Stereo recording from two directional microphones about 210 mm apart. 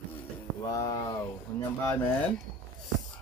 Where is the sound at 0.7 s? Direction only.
15° left (ahead or behind).